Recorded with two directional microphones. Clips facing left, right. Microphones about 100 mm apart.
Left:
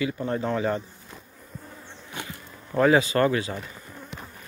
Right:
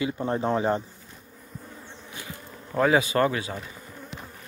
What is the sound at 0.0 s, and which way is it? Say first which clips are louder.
Speech: right 1 dB; 25° right (ahead or behind).